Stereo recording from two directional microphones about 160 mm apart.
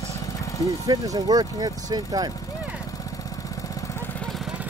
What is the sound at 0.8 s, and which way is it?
Speech, 25° right (ahead or behind).